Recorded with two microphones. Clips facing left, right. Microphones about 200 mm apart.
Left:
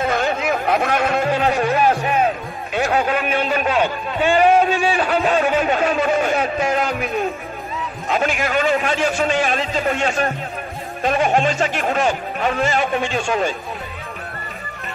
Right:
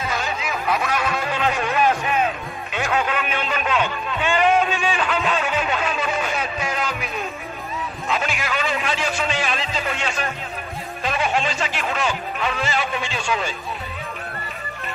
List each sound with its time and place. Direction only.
0.0 s chatter: 55° left (ahead or behind)
8.1 s speech: 45° left (ahead or behind)